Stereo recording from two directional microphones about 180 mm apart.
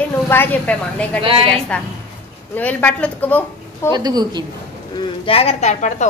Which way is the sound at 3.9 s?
20° right (ahead or behind).